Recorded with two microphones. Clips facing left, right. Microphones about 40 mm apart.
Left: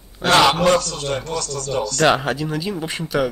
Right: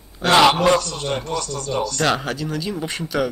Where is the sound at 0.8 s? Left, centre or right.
Right.